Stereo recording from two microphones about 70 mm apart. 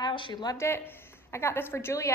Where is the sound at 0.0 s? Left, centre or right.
Left.